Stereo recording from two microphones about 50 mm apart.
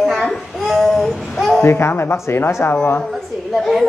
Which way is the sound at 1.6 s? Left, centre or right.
Left.